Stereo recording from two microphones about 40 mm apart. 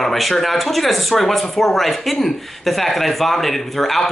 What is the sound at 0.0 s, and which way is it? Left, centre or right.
Speech, centre.